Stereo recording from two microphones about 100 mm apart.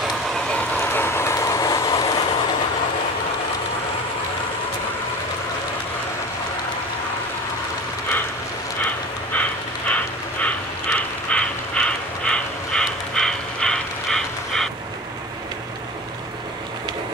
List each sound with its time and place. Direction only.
0.3 s vehicle: 10° left (ahead or behind)
0.7 s train: 25° left (ahead or behind)
9.3 s a sound: 15° left (ahead or behind)